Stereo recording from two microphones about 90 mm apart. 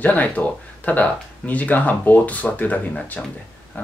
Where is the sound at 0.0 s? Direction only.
15° left (ahead or behind).